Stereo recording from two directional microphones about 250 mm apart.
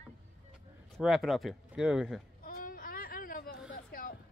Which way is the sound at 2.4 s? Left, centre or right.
Left.